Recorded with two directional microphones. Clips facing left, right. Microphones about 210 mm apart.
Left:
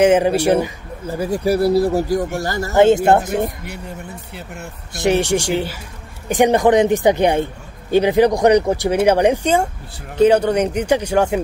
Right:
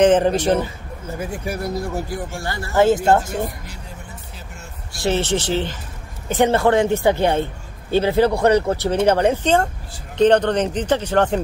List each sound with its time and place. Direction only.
0.0 s speech: 10° left (ahead or behind)
1.1 s speech: 35° left (ahead or behind)
2.7 s speech: 20° left (ahead or behind)
4.9 s speech: 15° left (ahead or behind)